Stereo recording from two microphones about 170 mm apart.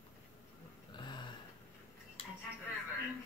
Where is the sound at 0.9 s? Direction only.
25° left (ahead or behind).